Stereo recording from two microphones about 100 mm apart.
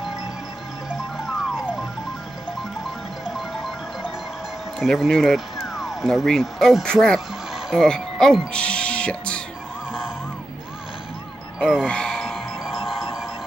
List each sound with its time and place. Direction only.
1.1 s music: centre (ahead or behind)
3.3 s music: 5° right (ahead or behind)
4.7 s speech: 5° left (ahead or behind)
11.8 s a sound: 10° left (ahead or behind)